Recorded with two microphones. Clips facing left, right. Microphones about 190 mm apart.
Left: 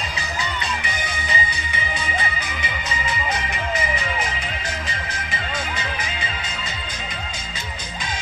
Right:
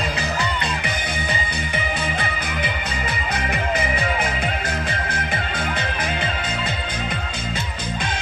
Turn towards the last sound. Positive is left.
turn(degrees=-55)  # may be behind; listen again after turning